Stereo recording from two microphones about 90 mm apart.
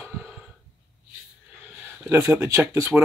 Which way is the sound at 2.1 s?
30° right (ahead or behind).